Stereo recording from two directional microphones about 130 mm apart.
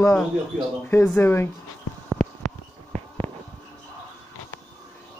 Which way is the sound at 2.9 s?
45° right (ahead or behind).